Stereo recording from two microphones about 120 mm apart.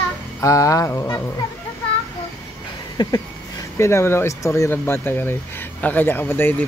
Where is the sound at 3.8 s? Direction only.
20° left (ahead or behind).